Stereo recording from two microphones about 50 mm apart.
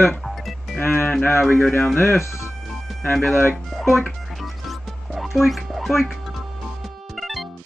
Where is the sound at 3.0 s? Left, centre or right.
Left.